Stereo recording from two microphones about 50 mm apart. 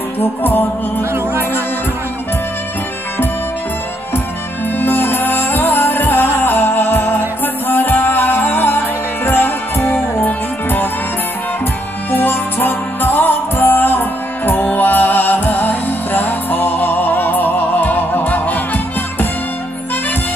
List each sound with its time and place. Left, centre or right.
0.2 s music: left
4.7 s music: left
12.1 s music: left